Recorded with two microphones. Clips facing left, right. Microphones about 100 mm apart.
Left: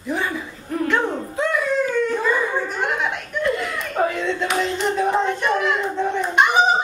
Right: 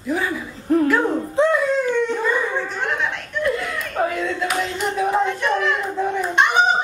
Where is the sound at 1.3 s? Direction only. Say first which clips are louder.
Right 6 dB; 25° right (ahead or behind).